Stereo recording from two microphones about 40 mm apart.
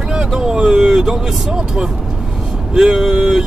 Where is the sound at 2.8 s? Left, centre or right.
Centre.